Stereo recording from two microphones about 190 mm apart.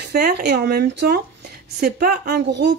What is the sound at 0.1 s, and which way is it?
Speech, 60° right (ahead or behind).